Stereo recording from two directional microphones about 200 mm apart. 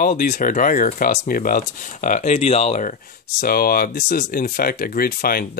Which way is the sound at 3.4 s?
50° left (ahead or behind).